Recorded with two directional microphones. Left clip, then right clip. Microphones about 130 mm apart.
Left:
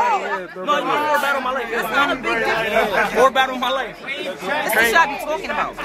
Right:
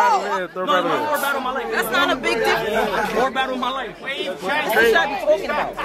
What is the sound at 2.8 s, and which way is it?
Speech, 15° left (ahead or behind).